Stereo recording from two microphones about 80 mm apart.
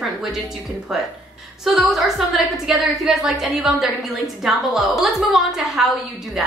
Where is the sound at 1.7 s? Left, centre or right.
Centre.